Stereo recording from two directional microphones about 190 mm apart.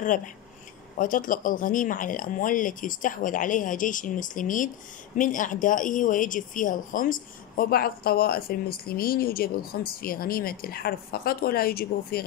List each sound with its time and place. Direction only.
0.9 s a woman's voice: 45° left (ahead or behind)